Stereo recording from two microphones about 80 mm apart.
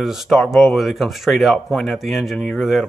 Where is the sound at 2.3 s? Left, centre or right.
Centre.